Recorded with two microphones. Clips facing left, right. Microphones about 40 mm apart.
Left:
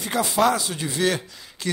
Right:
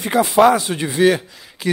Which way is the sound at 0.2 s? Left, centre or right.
Right.